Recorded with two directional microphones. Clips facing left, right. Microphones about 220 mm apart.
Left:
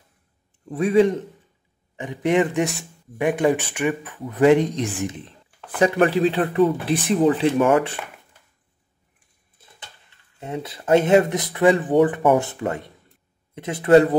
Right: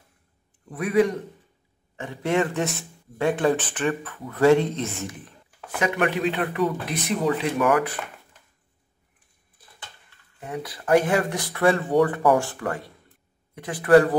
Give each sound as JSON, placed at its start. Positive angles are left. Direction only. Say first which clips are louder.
{"t": 0.7, "sound": "speech", "louder": "left 4 dB", "side_deg": 25}
{"t": 5.8, "sound": "speech", "louder": "left 6 dB", "side_deg": 35}
{"t": 9.6, "sound": "a sound", "louder": "left 2 dB", "side_deg": 25}
{"t": 10.4, "sound": "speech", "louder": "left 2 dB", "side_deg": 25}